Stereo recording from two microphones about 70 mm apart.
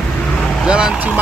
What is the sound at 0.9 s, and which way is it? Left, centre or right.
Speech, right.